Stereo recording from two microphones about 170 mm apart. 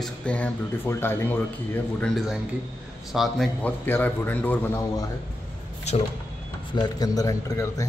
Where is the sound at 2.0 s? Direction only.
Centre (ahead or behind).